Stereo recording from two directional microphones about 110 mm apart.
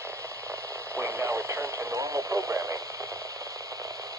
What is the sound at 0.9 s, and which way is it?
Radio, 25° right (ahead or behind).